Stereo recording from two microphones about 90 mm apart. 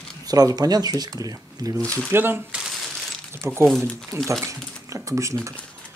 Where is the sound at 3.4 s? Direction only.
25° right (ahead or behind).